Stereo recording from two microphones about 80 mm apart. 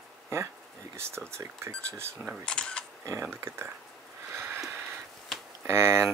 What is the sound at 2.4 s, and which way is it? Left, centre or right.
Speech, centre.